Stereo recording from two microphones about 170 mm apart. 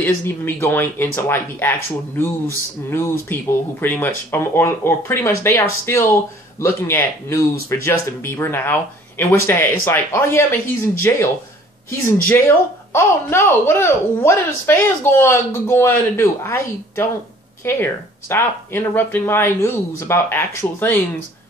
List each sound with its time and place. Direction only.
0.0 s speech: 10° left (ahead or behind)